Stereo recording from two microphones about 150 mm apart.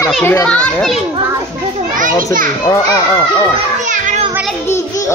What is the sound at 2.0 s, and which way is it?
Speech, 65° right (ahead or behind).